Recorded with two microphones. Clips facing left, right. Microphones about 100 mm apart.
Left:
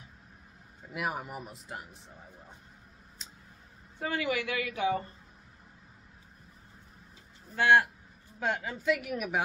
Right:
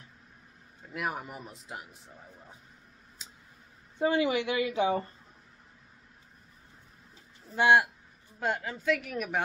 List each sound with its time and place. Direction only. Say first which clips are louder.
0.9 s a woman's voice: even; 5° left (ahead or behind)
3.2 s tick: even; 5° right (ahead or behind)
4.0 s a woman's voice: right 5 dB; 20° right (ahead or behind)
7.5 s speech: right 1 dB; 15° right (ahead or behind)
8.4 s a woman's voice: right 1 dB; centre (ahead or behind)